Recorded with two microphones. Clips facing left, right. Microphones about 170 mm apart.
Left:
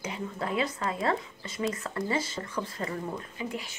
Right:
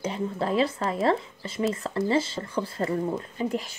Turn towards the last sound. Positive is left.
turn(degrees=-40)  # may be behind; listen again after turning